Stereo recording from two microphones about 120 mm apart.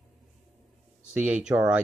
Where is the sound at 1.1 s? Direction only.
10° right (ahead or behind).